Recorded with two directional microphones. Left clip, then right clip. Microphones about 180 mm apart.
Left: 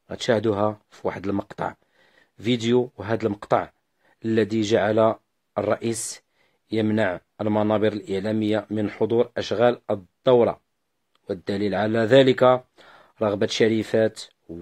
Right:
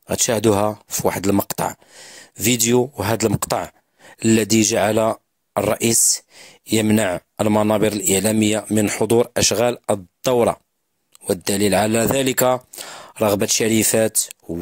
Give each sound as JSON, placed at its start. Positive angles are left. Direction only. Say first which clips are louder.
{"t": 0.0, "sound": "a man's voice", "louder": "right 4 dB", "side_deg": -45}